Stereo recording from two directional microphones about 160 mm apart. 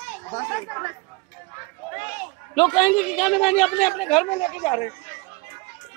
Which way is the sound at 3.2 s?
Centre (ahead or behind).